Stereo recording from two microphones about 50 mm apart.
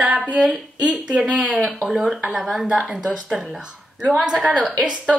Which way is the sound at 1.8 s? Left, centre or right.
Centre.